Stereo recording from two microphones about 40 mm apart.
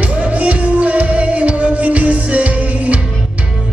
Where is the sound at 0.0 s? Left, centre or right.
Right.